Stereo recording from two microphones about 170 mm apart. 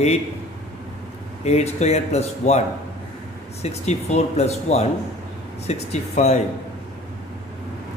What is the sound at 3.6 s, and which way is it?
Speech, 40° left (ahead or behind).